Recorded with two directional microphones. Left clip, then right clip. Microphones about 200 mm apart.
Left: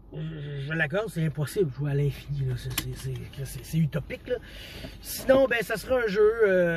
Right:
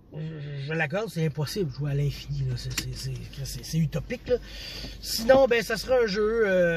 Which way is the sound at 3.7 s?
10° right (ahead or behind).